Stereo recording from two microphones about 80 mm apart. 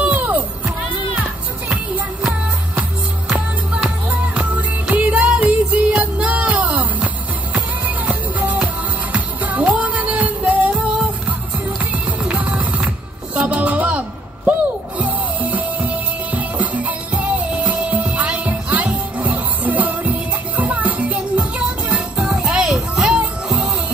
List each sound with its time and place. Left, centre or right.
0.1 s music: right
3.7 s music: centre
10.7 s music: centre
11.8 s music: centre
21.9 s music: centre